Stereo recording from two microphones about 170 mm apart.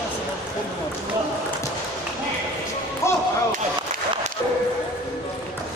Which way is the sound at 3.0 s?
15° left (ahead or behind).